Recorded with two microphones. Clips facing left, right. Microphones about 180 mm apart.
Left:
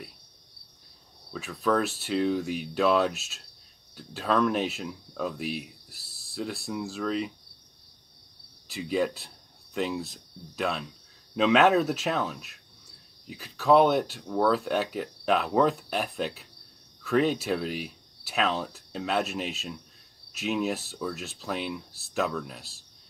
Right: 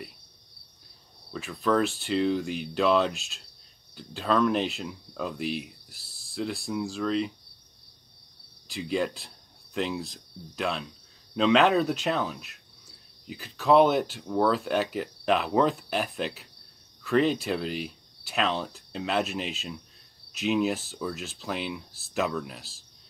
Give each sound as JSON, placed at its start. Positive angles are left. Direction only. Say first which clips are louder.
{"t": 1.3, "sound": "speech", "louder": "right 1 dB", "side_deg": 0}
{"t": 8.6, "sound": "speech", "louder": "left 1 dB", "side_deg": 0}